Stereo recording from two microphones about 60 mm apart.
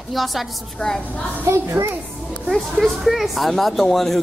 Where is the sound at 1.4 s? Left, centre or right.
Right.